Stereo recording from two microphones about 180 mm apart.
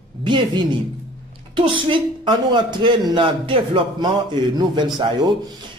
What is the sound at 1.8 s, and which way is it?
Speech, 25° right (ahead or behind).